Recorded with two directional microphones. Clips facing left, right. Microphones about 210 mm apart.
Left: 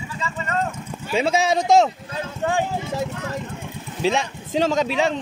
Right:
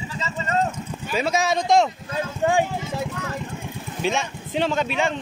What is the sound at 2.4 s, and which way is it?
Speech, 15° right (ahead or behind).